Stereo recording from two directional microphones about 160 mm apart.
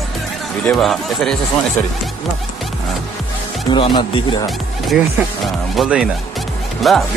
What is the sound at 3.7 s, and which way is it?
Speech, 30° left (ahead or behind).